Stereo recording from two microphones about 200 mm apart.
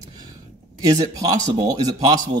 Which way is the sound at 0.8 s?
20° right (ahead or behind).